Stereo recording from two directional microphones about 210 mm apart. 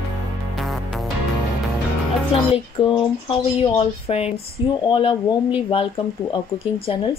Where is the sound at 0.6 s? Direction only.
Centre (ahead or behind).